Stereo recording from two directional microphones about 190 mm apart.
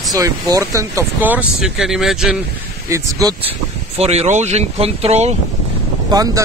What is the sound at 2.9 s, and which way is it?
Speech, 15° right (ahead or behind).